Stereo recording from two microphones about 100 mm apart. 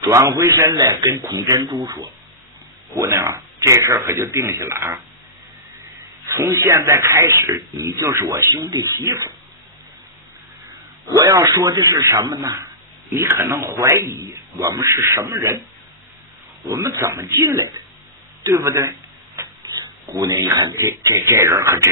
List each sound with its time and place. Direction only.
0.0 s speech: 30° right (ahead or behind)
3.1 s speech: 25° right (ahead or behind)
6.2 s speech: 25° right (ahead or behind)
11.1 s speech: 35° right (ahead or behind)
16.6 s speech: 30° right (ahead or behind)
18.4 s a sound: 30° right (ahead or behind)
19.7 s a sound: 35° right (ahead or behind)
20.8 s speech: 30° right (ahead or behind)